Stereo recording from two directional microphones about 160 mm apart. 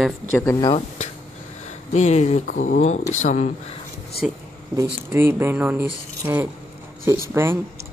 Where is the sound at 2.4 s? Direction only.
55° left (ahead or behind).